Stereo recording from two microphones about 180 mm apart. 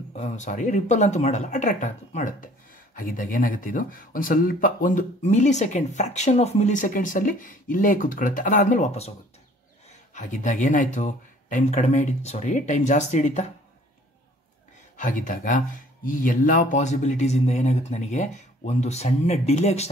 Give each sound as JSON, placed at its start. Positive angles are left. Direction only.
{"t": 0.2, "sound": "speech", "side_deg": 45}
{"t": 10.1, "sound": "speech", "side_deg": 45}
{"t": 15.0, "sound": "speech", "side_deg": 45}